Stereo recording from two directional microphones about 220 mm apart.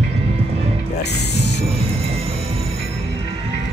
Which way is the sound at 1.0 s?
50° left (ahead or behind).